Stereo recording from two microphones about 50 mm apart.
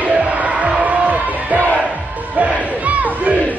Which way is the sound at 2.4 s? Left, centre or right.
Right.